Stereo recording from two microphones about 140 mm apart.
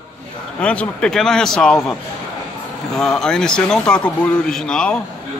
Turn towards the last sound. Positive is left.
turn(degrees=5)  # may be behind; listen again after turning